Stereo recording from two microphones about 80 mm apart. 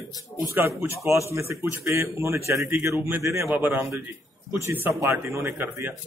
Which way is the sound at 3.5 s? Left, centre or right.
Right.